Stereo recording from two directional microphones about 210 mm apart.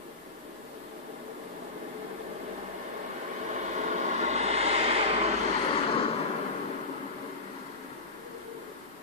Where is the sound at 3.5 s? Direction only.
35° right (ahead or behind).